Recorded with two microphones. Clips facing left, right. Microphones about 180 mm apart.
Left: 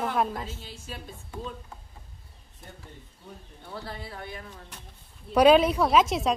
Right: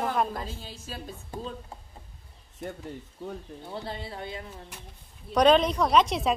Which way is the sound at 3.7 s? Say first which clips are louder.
Right 2 dB; 25° right (ahead or behind).